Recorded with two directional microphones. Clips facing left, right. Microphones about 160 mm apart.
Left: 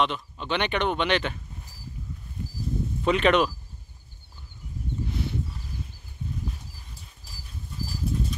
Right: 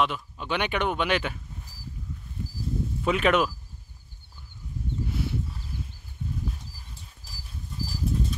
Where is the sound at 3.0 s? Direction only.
5° right (ahead or behind).